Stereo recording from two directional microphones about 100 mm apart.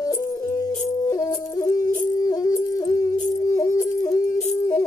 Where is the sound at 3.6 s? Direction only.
35° left (ahead or behind).